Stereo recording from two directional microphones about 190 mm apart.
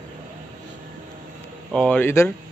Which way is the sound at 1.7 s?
5° left (ahead or behind).